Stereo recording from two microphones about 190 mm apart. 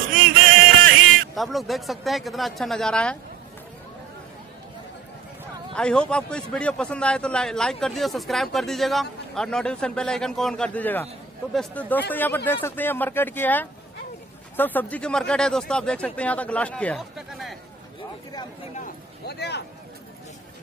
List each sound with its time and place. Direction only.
0.1 s a sound: 45° right (ahead or behind)
1.3 s a man's voice: centre (ahead or behind)
5.8 s a man's voice: 5° left (ahead or behind)
19.2 s speech: 60° left (ahead or behind)